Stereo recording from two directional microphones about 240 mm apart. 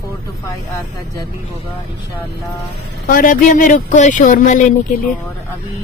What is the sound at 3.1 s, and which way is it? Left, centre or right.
Speech, left.